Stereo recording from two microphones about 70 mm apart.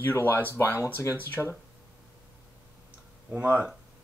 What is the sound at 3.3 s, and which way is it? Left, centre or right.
Speech, centre.